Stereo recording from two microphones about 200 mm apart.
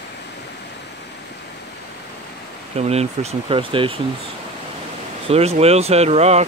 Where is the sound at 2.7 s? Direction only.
30° right (ahead or behind).